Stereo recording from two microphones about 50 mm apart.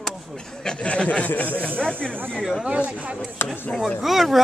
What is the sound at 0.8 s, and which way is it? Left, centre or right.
Speech, left.